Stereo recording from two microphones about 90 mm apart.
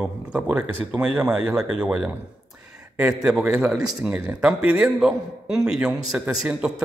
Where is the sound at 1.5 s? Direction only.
15° right (ahead or behind).